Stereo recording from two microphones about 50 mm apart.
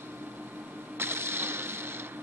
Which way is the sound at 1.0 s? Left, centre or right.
Right.